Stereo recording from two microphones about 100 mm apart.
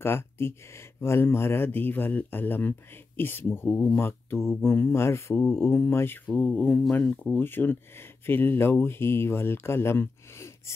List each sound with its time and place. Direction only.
0.0 s speech: 25° left (ahead or behind)